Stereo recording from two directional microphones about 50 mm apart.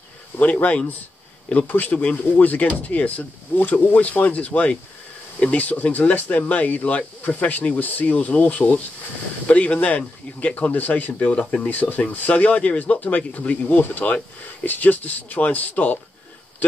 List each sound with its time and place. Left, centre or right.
0.4 s speech: left
11.3 s speech: centre
11.7 s speech: left